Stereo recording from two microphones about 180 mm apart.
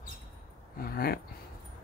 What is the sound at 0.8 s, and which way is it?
Speech, 55° left (ahead or behind).